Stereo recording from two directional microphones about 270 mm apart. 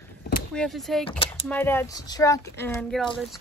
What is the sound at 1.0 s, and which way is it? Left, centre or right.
Speech, centre.